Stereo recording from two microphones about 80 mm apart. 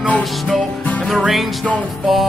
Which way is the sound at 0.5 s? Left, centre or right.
Centre.